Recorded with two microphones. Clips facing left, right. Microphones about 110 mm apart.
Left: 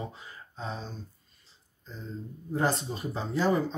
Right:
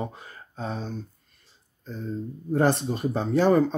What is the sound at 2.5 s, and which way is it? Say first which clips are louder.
Speech: right 6 dB; 60° right (ahead or behind).